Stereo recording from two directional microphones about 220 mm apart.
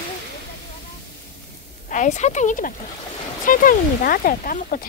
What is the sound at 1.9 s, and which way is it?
Speech, 35° left (ahead or behind).